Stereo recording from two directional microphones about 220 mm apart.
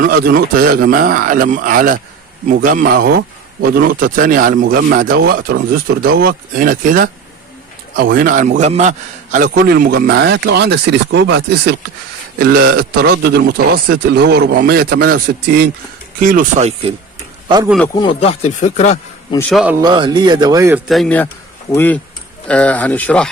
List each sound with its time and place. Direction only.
0.0 s a man's voice: 40° right (ahead or behind)
17.8 s speech: 15° left (ahead or behind)
18.2 s speech: 30° left (ahead or behind)
19.5 s speech: 5° right (ahead or behind)
19.8 s speech: 20° right (ahead or behind)
20.9 s speech: 5° left (ahead or behind)